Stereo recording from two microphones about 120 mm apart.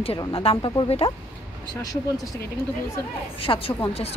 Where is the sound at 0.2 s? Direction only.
50° left (ahead or behind).